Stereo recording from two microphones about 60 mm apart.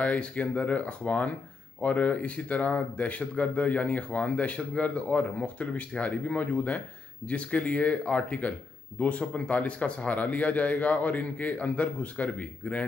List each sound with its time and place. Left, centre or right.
0.0 s speech: left